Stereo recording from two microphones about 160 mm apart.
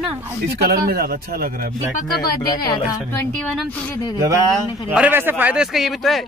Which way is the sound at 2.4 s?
25° left (ahead or behind).